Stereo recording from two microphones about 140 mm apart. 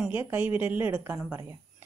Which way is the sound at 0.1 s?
15° right (ahead or behind).